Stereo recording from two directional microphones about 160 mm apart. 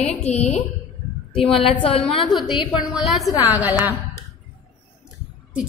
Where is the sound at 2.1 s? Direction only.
Centre (ahead or behind).